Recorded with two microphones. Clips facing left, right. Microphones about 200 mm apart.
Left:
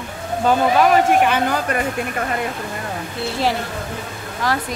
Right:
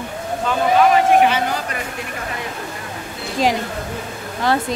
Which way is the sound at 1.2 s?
50° left (ahead or behind).